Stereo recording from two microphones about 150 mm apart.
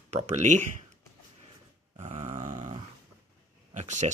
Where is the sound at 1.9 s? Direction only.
45° right (ahead or behind).